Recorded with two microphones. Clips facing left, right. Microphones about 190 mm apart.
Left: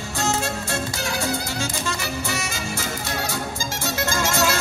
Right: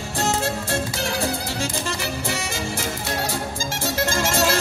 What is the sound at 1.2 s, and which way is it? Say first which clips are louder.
Music: right 1 dB; 30° right (ahead or behind).